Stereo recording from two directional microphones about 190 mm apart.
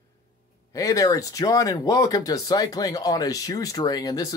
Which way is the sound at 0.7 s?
15° left (ahead or behind).